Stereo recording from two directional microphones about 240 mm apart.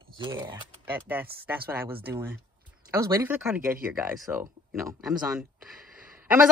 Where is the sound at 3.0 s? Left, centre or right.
Centre.